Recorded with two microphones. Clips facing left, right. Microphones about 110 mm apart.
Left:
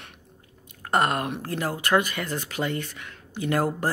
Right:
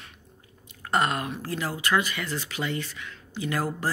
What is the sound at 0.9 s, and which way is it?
Speech, 50° left (ahead or behind).